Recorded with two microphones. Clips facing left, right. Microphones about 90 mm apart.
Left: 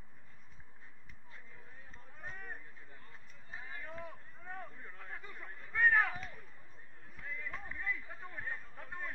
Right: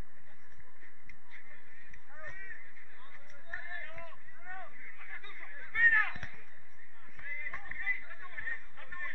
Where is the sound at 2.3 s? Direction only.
55° left (ahead or behind).